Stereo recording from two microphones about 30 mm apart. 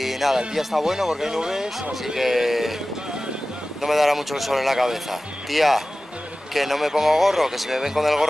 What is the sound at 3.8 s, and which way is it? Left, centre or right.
Speech, centre.